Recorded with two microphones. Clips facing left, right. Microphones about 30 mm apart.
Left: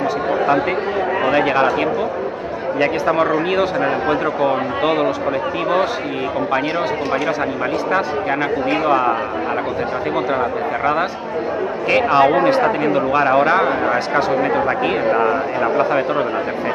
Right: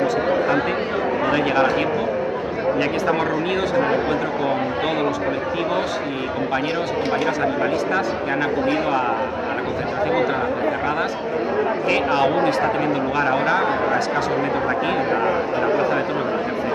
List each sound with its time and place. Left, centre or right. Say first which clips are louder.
1.3 s a man's voice: left 3 dB; centre
2.8 s a man's voice: left 7 dB; centre
7.9 s a man's voice: left 3 dB; centre
11.9 s a man's voice: left 7 dB; centre
13.6 s a man's voice: left 3 dB; left
15.2 s a man's voice: left 2 dB; left